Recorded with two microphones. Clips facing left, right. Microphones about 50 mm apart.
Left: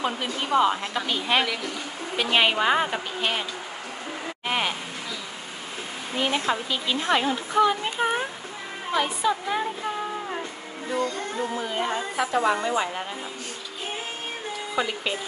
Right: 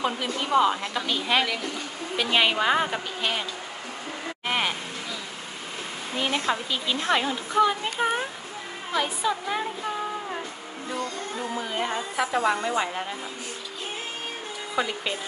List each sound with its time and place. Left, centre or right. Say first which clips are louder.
0.0 s a woman's voice: even; centre
4.5 s speech: even; centre
6.1 s a woman's voice: left 1 dB; centre
10.9 s music: left 4 dB; centre
11.5 s speech: right 1 dB; centre
14.8 s speech: even; centre